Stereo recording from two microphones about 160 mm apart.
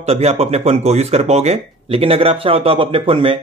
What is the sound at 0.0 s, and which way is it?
Speech, 40° right (ahead or behind).